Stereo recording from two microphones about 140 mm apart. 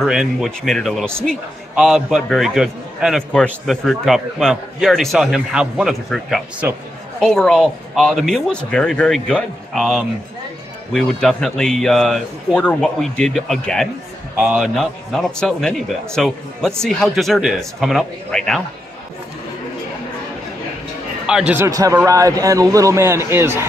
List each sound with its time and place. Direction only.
0.0 s a man's voice: centre (ahead or behind)
21.3 s speech: 5° right (ahead or behind)
21.5 s a man's voice: 20° right (ahead or behind)